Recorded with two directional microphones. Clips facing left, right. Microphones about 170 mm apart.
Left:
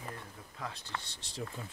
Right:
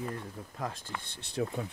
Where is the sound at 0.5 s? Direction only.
45° right (ahead or behind).